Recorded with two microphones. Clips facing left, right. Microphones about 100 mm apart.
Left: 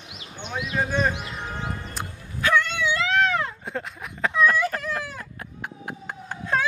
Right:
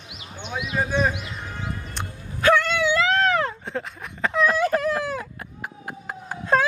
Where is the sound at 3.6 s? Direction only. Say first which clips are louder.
Right 1 dB; centre (ahead or behind).